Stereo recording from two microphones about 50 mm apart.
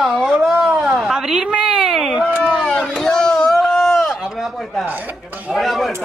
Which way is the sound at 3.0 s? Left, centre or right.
Centre.